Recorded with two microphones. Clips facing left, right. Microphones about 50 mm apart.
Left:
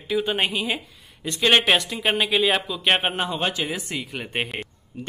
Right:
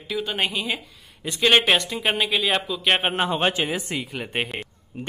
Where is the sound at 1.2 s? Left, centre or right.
Centre.